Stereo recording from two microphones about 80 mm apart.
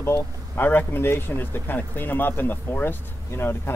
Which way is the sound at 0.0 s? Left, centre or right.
Left.